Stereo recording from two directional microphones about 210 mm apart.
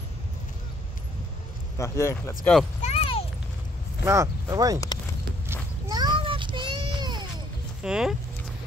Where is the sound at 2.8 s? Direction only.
30° left (ahead or behind).